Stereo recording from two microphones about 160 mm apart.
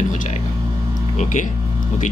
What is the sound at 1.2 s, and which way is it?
Speech, 50° left (ahead or behind).